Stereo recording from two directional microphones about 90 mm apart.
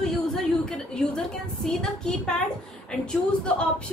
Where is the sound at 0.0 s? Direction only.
5° left (ahead or behind).